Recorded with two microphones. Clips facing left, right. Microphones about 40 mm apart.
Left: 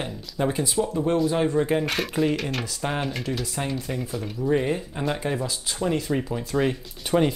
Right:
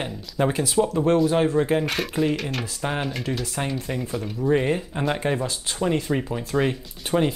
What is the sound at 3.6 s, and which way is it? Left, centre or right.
Speech, right.